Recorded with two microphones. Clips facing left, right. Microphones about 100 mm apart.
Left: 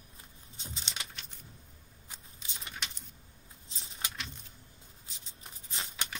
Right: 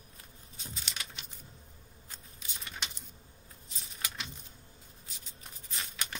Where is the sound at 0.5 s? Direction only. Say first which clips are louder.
Even; 25° left (ahead or behind).